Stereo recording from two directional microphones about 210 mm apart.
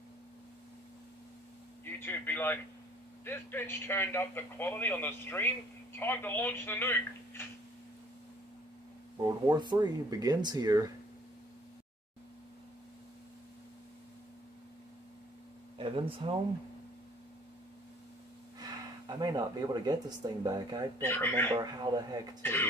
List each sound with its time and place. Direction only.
1.9 s a man's voice: 10° left (ahead or behind)
9.2 s speech: 20° right (ahead or behind)
15.8 s a man's voice: 25° right (ahead or behind)
18.6 s speech: 20° right (ahead or behind)
21.0 s a man's voice: 10° left (ahead or behind)
21.5 s a man's voice: 20° right (ahead or behind)
22.4 s a man's voice: 10° left (ahead or behind)